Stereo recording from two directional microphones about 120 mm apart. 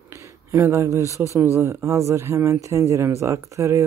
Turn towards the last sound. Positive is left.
turn(degrees=-25)  # may be behind; listen again after turning